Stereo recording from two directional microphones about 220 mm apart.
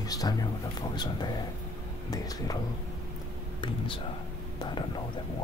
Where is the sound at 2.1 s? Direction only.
15° left (ahead or behind).